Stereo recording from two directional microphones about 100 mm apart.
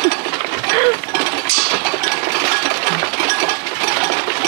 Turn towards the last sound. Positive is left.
turn(degrees=-25)  # may be behind; listen again after turning